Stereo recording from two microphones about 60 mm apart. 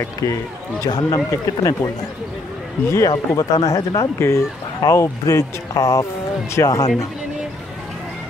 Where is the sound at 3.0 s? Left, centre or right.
Left.